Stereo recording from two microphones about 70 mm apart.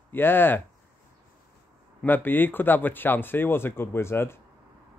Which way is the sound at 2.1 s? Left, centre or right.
Left.